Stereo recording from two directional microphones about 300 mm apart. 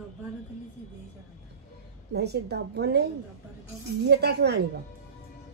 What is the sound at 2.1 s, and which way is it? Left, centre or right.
Speech, right.